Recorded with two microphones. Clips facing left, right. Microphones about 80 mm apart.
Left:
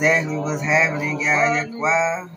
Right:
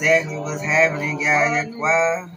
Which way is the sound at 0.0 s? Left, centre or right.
Left.